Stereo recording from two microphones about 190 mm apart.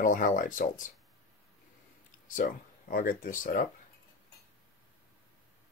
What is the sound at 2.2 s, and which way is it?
Speech, 45° left (ahead or behind).